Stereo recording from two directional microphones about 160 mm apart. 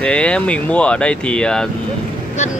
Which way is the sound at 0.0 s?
5° left (ahead or behind).